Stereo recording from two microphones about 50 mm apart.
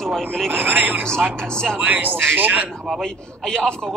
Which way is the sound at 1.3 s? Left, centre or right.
Centre.